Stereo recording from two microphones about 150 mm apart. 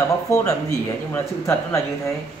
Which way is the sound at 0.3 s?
20° left (ahead or behind).